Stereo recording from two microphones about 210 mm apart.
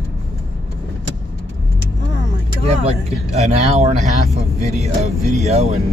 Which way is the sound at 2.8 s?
30° right (ahead or behind).